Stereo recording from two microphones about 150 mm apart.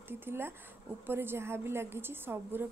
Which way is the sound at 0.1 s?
15° right (ahead or behind).